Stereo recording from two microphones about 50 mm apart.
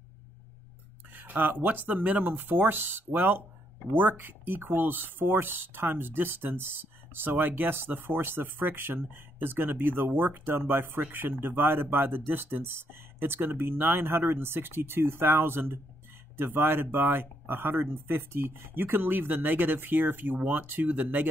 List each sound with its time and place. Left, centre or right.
1.1 s speech: right